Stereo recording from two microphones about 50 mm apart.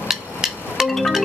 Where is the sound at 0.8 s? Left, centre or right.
Centre.